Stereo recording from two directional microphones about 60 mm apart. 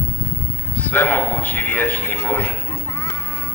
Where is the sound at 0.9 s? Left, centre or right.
Left.